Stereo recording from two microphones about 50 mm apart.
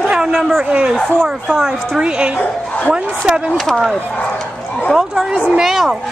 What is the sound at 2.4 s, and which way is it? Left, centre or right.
Speech, left.